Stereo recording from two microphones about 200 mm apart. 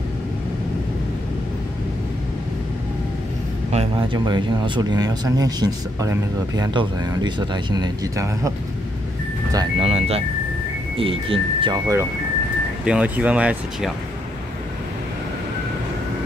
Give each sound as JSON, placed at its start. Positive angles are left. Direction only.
{"t": 3.7, "sound": "speech", "side_deg": -25}
{"t": 9.8, "sound": "speech", "side_deg": -30}
{"t": 12.8, "sound": "speech", "side_deg": -5}